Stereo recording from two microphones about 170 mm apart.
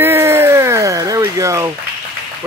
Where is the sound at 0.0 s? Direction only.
15° right (ahead or behind).